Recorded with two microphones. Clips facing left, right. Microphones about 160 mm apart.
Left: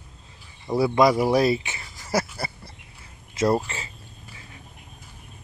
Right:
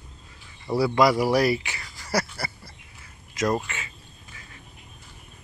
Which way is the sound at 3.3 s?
30° left (ahead or behind).